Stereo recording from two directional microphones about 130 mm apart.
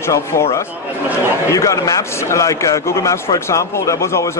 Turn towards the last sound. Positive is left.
turn(degrees=20)  # may be behind; listen again after turning